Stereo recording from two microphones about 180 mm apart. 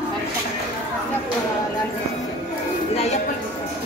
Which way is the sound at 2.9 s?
35° left (ahead or behind).